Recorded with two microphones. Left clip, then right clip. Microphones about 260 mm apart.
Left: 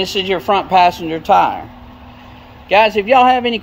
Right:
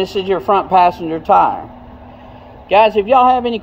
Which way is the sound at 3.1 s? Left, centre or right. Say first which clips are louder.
Left 2 dB; left.